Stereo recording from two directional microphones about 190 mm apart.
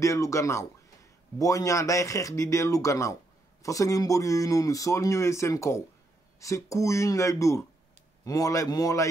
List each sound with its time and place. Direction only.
0.0 s speech: 15° left (ahead or behind)